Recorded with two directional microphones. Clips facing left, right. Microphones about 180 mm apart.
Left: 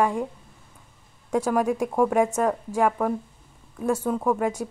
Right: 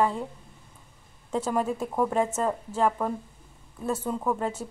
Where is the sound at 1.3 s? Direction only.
10° left (ahead or behind).